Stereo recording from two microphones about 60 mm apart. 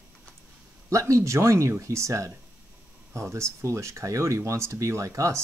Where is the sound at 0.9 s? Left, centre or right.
Right.